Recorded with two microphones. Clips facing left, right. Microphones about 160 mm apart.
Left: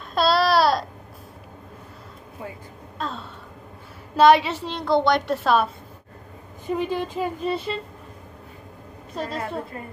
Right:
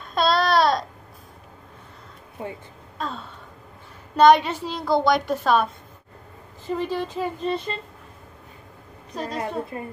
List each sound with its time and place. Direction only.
0.1 s babbling: 5° left (ahead or behind)
2.4 s a woman's voice: 25° right (ahead or behind)
3.0 s gasp: centre (ahead or behind)
4.2 s a woman's voice: 5° left (ahead or behind)
6.7 s a woman's voice: 10° left (ahead or behind)
9.1 s a woman's voice: centre (ahead or behind)
9.7 s a woman's voice: 25° right (ahead or behind)